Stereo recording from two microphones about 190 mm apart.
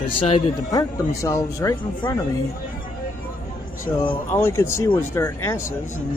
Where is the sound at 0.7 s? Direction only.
20° left (ahead or behind).